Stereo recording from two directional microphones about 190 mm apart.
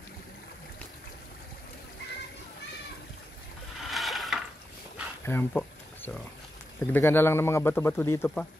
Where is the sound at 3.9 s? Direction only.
Centre (ahead or behind).